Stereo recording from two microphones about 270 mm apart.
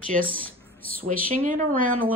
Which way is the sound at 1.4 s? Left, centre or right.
Right.